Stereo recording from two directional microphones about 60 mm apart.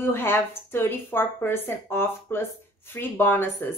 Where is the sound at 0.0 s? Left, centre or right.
Left.